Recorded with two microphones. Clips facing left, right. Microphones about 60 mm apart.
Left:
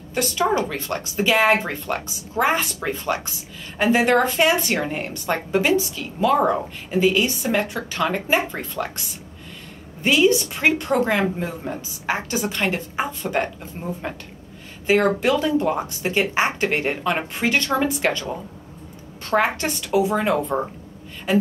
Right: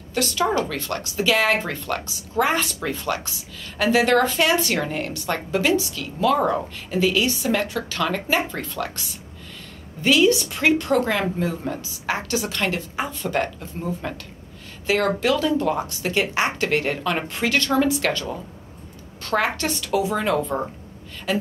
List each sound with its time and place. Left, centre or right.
0.1 s a woman's voice: centre
10.0 s a woman's voice: centre
17.2 s a woman's voice: centre
17.5 s speech: centre
19.2 s a woman's voice: centre